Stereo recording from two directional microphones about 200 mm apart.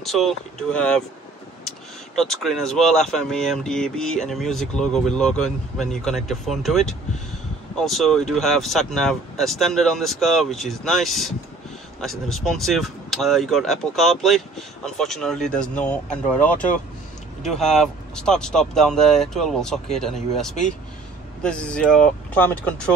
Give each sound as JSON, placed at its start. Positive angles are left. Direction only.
{"t": 0.0, "sound": "speech", "side_deg": 0}
{"t": 2.1, "sound": "speech", "side_deg": 0}
{"t": 17.5, "sound": "speech", "side_deg": 0}